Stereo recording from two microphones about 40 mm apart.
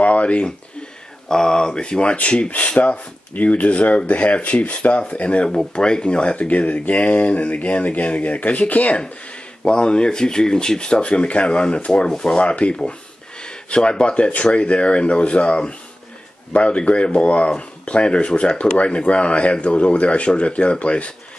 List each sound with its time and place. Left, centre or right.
0.0 s a sound: left
1.3 s speech: centre; by 5.5 s left
5.5 s speech: centre
6.4 s speech: left
9.7 s speech: left
12.1 s speech: centre
12.4 s speech: left